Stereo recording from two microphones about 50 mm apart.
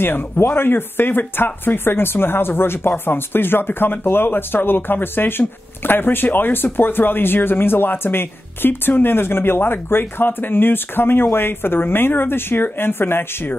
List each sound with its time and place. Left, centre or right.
0.0 s speech: left